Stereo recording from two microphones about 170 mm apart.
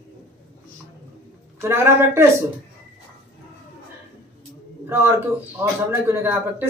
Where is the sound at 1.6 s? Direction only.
15° right (ahead or behind).